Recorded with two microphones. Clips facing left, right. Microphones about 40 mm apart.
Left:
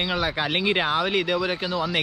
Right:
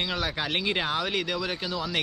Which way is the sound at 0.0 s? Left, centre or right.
Centre.